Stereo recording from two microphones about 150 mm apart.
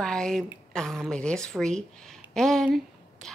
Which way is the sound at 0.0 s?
5° left (ahead or behind).